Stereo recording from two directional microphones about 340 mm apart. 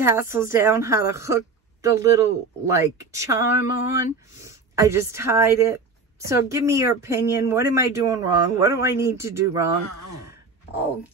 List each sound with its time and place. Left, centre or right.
0.3 s a woman's voice: centre